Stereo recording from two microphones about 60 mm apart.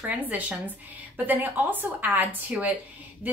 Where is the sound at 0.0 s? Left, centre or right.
Right.